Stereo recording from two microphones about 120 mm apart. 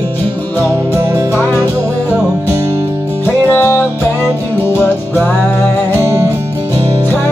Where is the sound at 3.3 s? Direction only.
15° left (ahead or behind).